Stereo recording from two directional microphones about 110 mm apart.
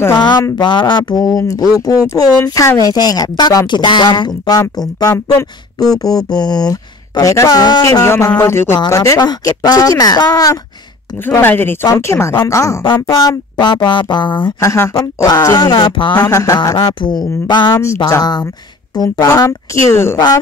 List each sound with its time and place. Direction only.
0.1 s speech: 45° left (ahead or behind)
7.8 s speech: 25° left (ahead or behind)
11.2 s speech: 20° left (ahead or behind)
13.0 s speech: 40° left (ahead or behind)
14.6 s speech: 25° left (ahead or behind)
15.5 s speech: 45° left (ahead or behind)
16.2 s speech: 30° left (ahead or behind)
17.0 s speech: 40° left (ahead or behind)
19.1 s speech: 30° left (ahead or behind)